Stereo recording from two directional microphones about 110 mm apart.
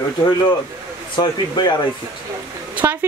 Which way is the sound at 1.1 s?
40° left (ahead or behind).